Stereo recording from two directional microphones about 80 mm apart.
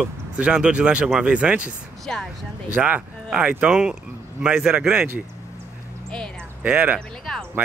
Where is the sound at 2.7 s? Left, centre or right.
Centre.